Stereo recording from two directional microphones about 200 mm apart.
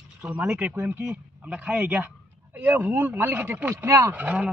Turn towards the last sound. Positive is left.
turn(degrees=-5)  # may be behind; listen again after turning